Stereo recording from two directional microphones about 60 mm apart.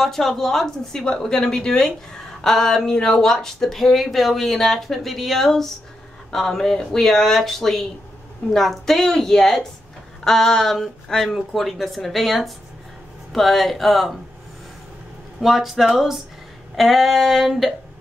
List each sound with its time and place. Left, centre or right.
0.0 s a woman's voice: centre
15.4 s speech: centre